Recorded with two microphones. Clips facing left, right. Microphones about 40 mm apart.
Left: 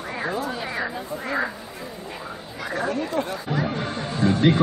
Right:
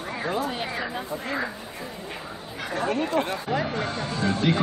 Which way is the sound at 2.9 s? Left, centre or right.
Right.